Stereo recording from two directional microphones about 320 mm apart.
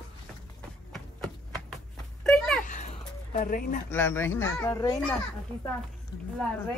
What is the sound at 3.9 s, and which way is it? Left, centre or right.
A child's voice, centre.